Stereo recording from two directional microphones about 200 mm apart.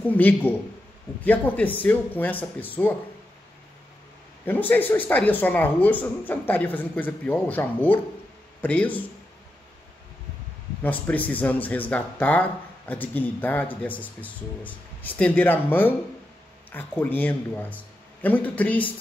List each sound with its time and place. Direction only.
0.1 s speech: 10° left (ahead or behind)
4.5 s speech: 10° left (ahead or behind)
10.8 s speech: 10° left (ahead or behind)